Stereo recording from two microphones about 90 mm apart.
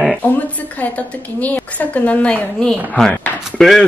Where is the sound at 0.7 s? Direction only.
15° left (ahead or behind).